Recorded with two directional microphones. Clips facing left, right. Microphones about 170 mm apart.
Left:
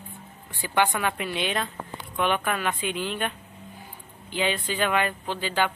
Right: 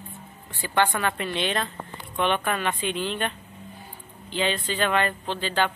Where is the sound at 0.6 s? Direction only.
10° left (ahead or behind).